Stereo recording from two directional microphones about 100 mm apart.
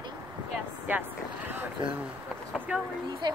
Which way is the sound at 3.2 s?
50° right (ahead or behind).